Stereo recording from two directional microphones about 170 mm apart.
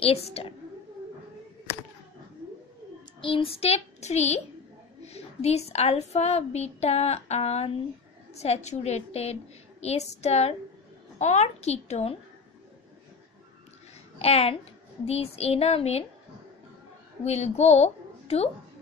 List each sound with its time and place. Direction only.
0.0 s a woman's voice: 35° left (ahead or behind)
3.2 s a woman's voice: 30° left (ahead or behind)
14.1 s a woman's voice: 35° left (ahead or behind)
17.2 s a woman's voice: 40° left (ahead or behind)